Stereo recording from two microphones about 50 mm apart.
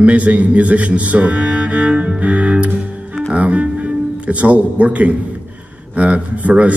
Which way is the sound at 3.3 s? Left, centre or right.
Right.